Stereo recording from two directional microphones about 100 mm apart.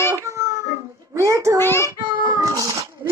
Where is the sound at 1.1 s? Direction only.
30° right (ahead or behind).